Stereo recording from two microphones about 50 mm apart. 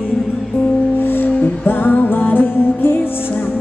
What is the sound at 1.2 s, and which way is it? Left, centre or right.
Music, left.